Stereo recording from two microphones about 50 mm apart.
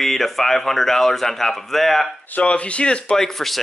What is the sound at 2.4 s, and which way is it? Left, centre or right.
Speech, left.